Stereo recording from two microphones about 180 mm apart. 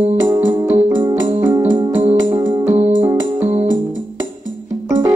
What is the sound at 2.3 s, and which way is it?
Music, 15° right (ahead or behind).